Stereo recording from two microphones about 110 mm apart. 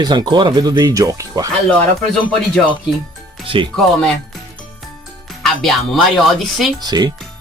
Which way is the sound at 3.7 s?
5° left (ahead or behind).